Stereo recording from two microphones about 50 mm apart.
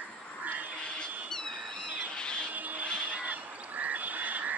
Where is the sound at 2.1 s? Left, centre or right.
Centre.